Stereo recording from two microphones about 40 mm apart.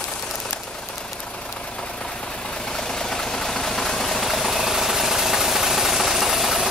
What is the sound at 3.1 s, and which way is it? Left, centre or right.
Vehicle, centre.